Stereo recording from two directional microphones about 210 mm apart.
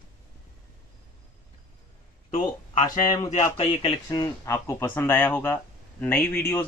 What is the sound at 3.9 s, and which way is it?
Speech, 15° left (ahead or behind).